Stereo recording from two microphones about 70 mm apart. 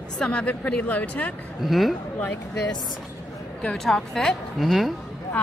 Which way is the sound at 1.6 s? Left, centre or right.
Centre.